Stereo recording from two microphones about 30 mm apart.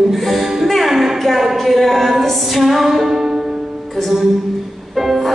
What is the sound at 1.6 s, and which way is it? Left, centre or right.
Speech, centre.